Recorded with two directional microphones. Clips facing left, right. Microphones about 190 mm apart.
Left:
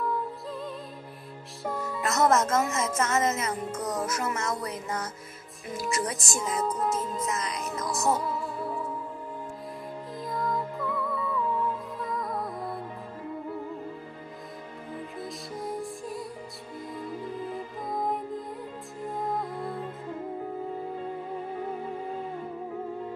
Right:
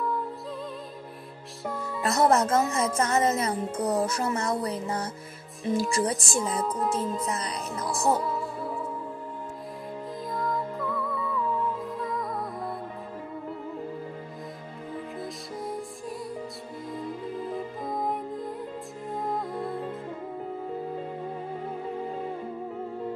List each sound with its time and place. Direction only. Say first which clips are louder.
2.0 s speech: right 2 dB; 30° right (ahead or behind)
6.6 s music: even; 5° left (ahead or behind)
7.2 s speech: even; 35° right (ahead or behind)
10.3 s music: even; centre (ahead or behind)
17.8 s music: left 1 dB; centre (ahead or behind)